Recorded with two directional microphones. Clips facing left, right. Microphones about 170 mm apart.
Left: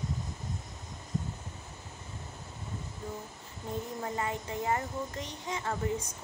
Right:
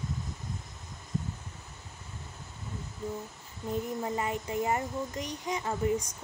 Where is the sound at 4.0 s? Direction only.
20° right (ahead or behind).